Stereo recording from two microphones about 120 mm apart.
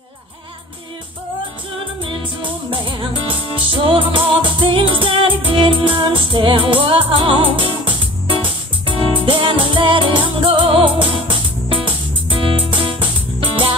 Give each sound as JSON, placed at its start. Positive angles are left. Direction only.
{"t": 2.0, "sound": "music", "side_deg": -45}